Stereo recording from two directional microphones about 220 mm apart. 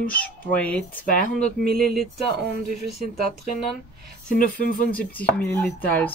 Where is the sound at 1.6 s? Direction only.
45° right (ahead or behind).